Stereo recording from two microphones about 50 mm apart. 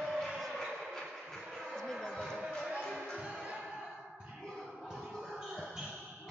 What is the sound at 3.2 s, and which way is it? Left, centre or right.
Music, centre.